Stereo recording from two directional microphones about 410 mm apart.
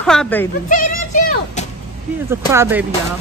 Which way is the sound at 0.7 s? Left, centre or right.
Centre.